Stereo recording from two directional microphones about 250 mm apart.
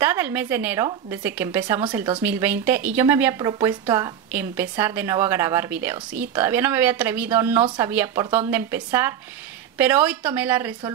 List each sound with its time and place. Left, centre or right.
0.0 s speech: centre
7.6 s speech: centre